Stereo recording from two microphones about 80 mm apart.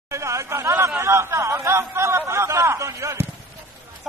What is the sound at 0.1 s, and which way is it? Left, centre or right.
Chatter, right.